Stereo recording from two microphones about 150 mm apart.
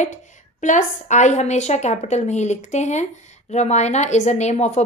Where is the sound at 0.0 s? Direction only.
55° left (ahead or behind).